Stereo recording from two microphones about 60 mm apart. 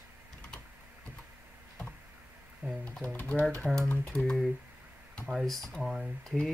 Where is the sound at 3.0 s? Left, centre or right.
Left.